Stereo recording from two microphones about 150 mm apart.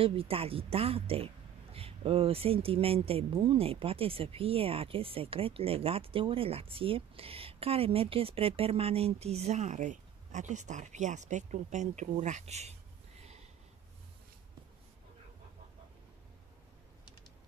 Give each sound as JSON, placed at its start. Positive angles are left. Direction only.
{"t": 0.0, "sound": "a woman's voice", "side_deg": -40}
{"t": 13.2, "sound": "snort", "side_deg": -45}